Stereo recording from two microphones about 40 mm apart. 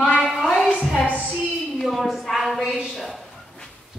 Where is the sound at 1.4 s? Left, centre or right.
Centre.